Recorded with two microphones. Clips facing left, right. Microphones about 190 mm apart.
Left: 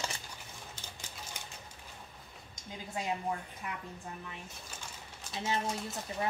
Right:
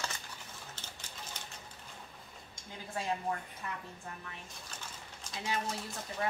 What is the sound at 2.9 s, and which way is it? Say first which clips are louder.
Speech: even; 15° left (ahead or behind).